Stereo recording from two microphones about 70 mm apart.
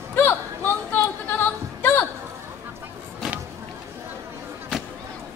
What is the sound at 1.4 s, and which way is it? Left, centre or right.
Music, left.